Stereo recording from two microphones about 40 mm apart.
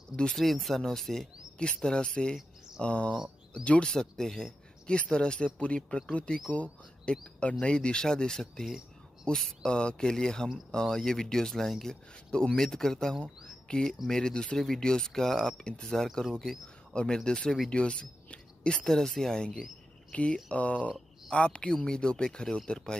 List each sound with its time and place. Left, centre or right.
0.3 s speech: centre
1.6 s speech: left
3.8 s speech: centre
4.8 s speech: left; by 13.2 s centre
13.7 s speech: left
18.9 s speech: centre
20.1 s speech: left